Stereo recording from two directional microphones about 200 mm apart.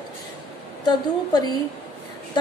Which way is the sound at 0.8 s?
20° left (ahead or behind).